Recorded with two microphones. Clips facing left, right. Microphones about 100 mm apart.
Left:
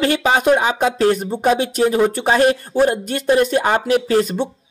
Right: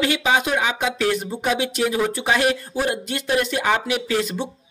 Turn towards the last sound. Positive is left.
turn(degrees=45)  # may be behind; listen again after turning